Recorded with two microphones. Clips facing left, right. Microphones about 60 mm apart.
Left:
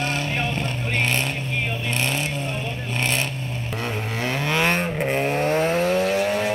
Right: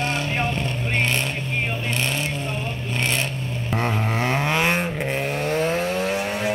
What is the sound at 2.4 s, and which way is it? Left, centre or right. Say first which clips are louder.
Vehicle: even; right.